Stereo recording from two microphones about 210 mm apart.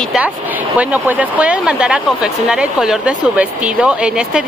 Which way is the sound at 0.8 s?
5° right (ahead or behind).